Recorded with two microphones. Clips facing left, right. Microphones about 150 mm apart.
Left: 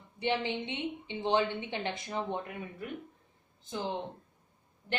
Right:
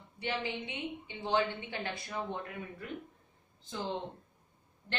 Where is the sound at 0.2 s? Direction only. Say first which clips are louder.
Left 5 dB; 25° left (ahead or behind).